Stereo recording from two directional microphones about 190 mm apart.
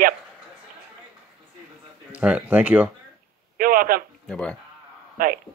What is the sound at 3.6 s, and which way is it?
Speech, 50° right (ahead or behind).